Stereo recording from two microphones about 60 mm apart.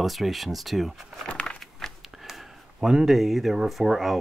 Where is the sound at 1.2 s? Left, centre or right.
Centre.